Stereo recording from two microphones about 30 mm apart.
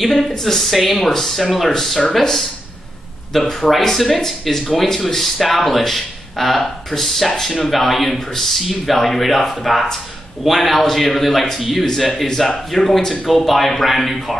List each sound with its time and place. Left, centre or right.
0.0 s speech: centre
0.3 s speech: centre
1.7 s speech: centre
3.3 s speech: centre